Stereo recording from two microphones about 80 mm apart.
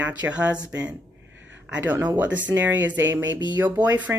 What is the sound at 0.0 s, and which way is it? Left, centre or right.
Speech, centre.